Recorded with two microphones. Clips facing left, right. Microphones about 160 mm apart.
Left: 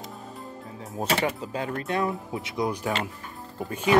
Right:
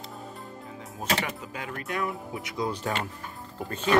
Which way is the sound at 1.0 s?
30° left (ahead or behind).